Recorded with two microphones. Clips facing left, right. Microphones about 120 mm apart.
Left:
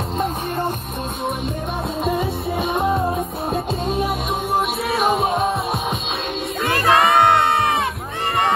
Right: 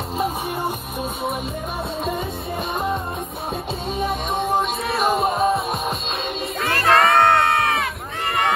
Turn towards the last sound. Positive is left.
turn(degrees=15)  # may be behind; listen again after turning